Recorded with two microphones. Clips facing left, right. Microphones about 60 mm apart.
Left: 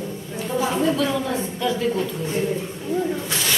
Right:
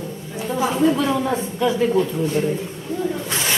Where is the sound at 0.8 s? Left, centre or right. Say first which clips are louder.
Right 3 dB; centre.